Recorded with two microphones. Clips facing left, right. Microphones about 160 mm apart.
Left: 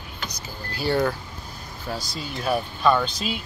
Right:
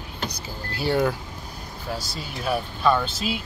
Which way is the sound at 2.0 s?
Centre (ahead or behind).